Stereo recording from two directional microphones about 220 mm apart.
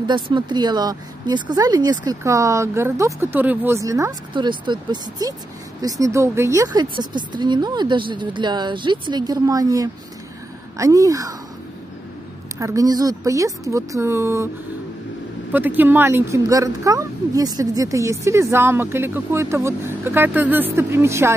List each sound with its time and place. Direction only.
0.0 s a woman's voice: 20° right (ahead or behind)
12.5 s speech: 15° right (ahead or behind)
15.5 s speech: 10° right (ahead or behind)